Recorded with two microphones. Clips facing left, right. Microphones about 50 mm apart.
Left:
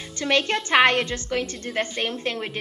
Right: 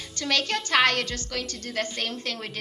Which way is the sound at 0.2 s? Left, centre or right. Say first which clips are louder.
Left 4 dB; left.